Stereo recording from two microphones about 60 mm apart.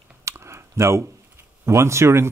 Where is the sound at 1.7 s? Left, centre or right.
Right.